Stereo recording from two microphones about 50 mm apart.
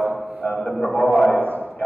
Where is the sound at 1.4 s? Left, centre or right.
Right.